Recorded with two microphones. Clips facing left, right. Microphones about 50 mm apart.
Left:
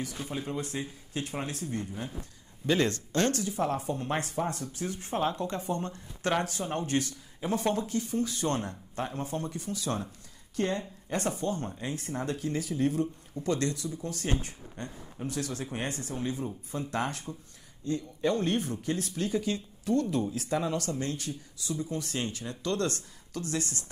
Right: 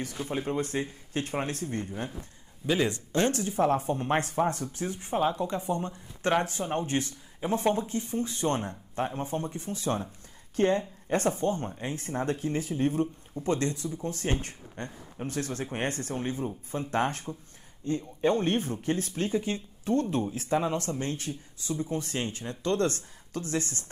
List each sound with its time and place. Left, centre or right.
0.0 s speech: right
2.6 s speech: centre
3.1 s speech: right
3.4 s a woman's voice: right